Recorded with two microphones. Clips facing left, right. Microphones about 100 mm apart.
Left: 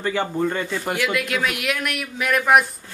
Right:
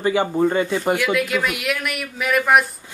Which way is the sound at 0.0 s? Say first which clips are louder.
Right 4 dB; 15° right (ahead or behind).